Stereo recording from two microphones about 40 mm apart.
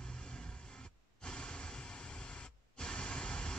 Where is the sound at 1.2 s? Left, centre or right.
Left.